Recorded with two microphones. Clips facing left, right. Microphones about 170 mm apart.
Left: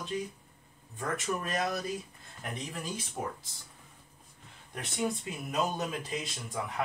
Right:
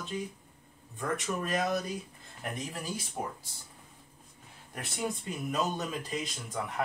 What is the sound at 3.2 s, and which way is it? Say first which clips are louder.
Speech: left 1 dB; 20° right (ahead or behind).